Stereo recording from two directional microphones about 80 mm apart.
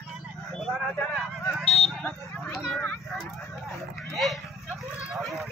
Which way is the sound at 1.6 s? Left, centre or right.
Centre.